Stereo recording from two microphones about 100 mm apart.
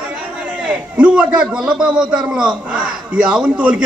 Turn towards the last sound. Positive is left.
turn(degrees=-10)  # may be behind; listen again after turning